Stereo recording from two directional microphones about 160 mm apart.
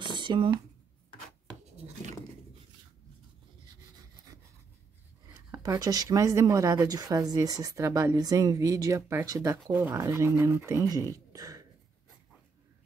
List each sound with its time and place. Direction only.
0.0 s a sound: 30° right (ahead or behind)
5.5 s speech: 20° right (ahead or behind)
11.3 s throat clearing: 20° right (ahead or behind)